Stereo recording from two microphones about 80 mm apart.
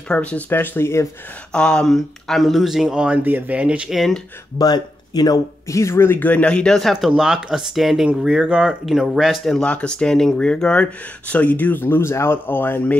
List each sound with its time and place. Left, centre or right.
0.1 s speech: centre
0.5 s speech: left
1.5 s speech: centre
3.9 s speech: centre
4.6 s speech: left
5.7 s speech: left